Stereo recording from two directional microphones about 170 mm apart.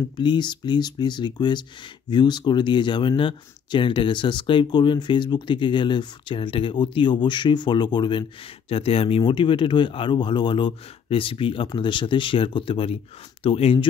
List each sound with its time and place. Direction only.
0.2 s speech: 25° left (ahead or behind)